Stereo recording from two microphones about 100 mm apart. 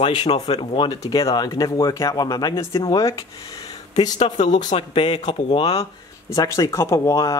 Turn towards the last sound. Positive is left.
turn(degrees=30)  # may be behind; listen again after turning